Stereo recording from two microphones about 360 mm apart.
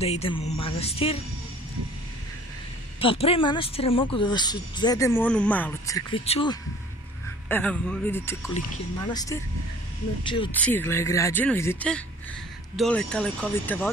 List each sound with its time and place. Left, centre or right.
0.0 s speech: centre
3.0 s speech: centre
7.4 s speech: centre